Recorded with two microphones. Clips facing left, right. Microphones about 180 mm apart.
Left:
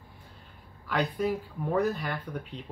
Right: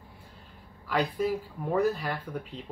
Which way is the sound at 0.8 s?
5° right (ahead or behind).